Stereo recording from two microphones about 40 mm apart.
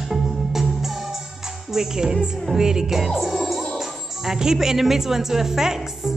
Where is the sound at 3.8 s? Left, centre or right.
Centre.